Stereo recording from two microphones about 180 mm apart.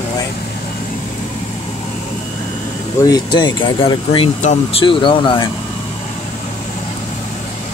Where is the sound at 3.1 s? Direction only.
25° left (ahead or behind).